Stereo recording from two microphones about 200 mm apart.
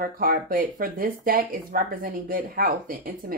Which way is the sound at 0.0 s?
45° right (ahead or behind).